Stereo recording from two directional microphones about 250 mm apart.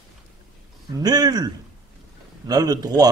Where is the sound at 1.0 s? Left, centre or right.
Centre.